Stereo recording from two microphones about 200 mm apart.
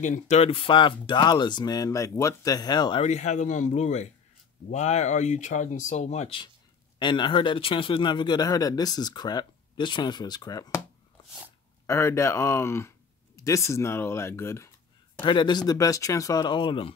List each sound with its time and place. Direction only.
0.0 s speech: 35° left (ahead or behind); by 3.0 s 20° left (ahead or behind)
3.0 s speech: 35° left (ahead or behind); by 10.8 s 20° left (ahead or behind)
11.8 s speech: 15° left (ahead or behind)